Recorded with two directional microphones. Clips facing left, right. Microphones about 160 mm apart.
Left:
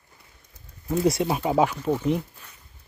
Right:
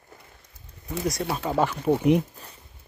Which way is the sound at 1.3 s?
10° left (ahead or behind).